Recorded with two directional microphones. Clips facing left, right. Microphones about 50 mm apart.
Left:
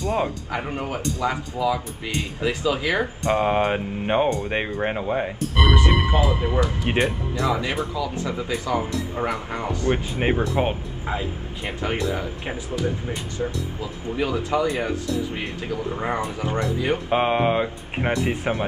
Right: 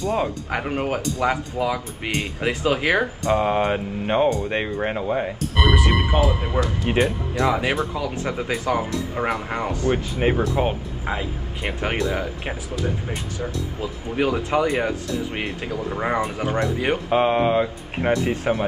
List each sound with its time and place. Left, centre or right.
0.5 s speech: right
3.3 s speech: centre
5.9 s speech: right
6.6 s speech: centre
7.3 s speech: right
9.9 s speech: left
10.4 s speech: centre
11.1 s speech: right
13.4 s speech: centre
13.7 s speech: right
16.0 s speech: right
17.1 s speech: centre